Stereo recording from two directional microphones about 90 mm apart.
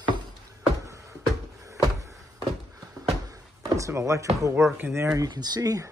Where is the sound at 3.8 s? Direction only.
35° right (ahead or behind).